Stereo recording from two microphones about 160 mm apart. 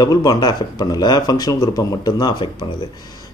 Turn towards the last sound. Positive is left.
turn(degrees=25)  # may be behind; listen again after turning